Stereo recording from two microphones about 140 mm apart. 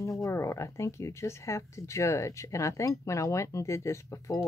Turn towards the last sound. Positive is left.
turn(degrees=20)  # may be behind; listen again after turning